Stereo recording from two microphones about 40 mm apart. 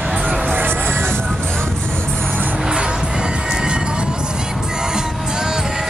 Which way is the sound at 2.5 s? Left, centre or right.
Right.